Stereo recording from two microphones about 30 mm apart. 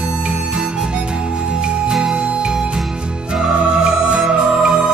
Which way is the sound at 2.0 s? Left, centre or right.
Right.